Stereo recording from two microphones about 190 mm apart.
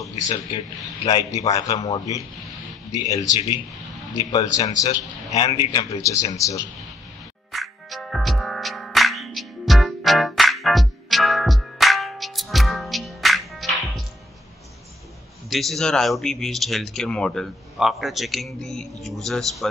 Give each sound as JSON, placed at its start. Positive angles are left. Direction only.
{"t": 0.0, "sound": "a man's voice", "side_deg": 20}
{"t": 3.3, "sound": "a man's voice", "side_deg": 25}
{"t": 7.5, "sound": "music", "side_deg": 0}
{"t": 15.5, "sound": "speech", "side_deg": 0}